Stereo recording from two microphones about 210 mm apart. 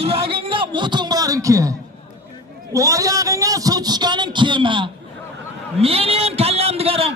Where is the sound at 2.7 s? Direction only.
15° right (ahead or behind).